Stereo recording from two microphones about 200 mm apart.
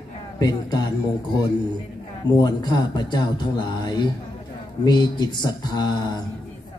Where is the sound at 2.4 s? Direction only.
20° left (ahead or behind).